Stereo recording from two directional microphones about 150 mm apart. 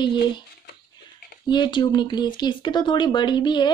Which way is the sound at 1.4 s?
30° left (ahead or behind).